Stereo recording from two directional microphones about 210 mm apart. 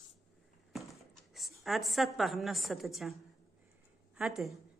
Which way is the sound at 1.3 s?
Centre (ahead or behind).